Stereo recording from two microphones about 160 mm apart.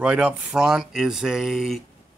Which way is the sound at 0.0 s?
5° right (ahead or behind).